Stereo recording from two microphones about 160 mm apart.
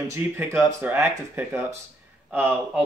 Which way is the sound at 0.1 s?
15° right (ahead or behind).